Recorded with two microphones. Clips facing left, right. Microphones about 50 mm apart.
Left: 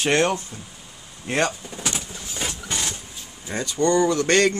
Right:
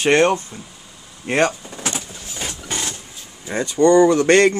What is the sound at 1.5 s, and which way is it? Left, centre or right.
Speech, right.